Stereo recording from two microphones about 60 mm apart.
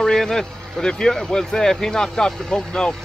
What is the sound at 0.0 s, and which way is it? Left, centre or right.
Speech, centre.